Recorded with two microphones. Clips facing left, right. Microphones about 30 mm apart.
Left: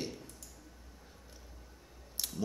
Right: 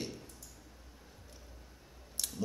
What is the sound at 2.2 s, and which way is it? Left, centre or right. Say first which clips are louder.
Clicking: even; centre.